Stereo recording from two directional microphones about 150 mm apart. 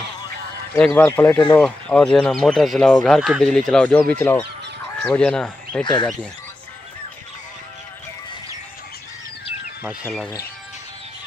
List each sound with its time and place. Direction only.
0.7 s speech: 10° left (ahead or behind)
1.6 s speech: 5° left (ahead or behind)
5.9 s speech: 30° left (ahead or behind)